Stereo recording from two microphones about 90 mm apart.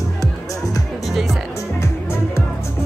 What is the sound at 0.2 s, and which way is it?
Music, 40° left (ahead or behind).